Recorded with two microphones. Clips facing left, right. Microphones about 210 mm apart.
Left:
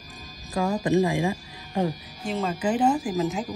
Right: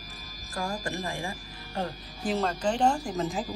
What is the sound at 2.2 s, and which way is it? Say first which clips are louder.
Speech: left 1 dB; centre (ahead or behind).